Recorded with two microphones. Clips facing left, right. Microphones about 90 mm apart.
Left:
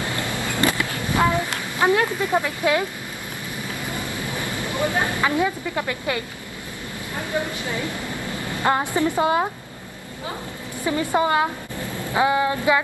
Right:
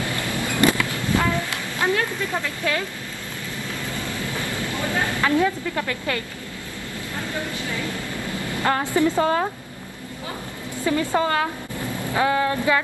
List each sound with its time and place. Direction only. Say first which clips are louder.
0.0 s vehicle: even; 20° left (ahead or behind)
0.9 s a sound: left 2 dB; 20° left (ahead or behind)
7.2 s a woman's voice: left 3 dB; 20° left (ahead or behind)
10.8 s a woman's voice: even; 15° left (ahead or behind)